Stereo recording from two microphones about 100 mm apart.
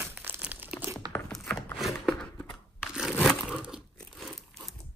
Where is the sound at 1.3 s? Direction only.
5° left (ahead or behind).